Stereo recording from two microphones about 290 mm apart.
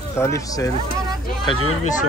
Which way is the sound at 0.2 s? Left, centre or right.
Centre.